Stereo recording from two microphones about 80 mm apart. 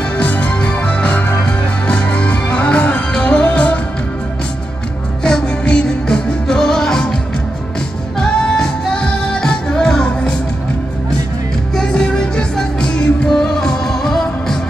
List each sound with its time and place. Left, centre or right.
0.2 s music: centre
5.2 s music: centre
8.2 s music: centre
11.7 s music: centre